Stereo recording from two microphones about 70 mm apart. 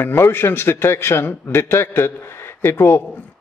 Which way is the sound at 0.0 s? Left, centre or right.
Left.